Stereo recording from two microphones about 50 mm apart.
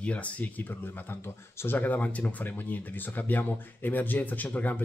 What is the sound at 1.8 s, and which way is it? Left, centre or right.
Speech, left.